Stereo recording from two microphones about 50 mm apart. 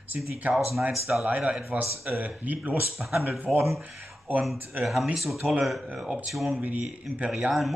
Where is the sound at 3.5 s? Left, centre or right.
Centre.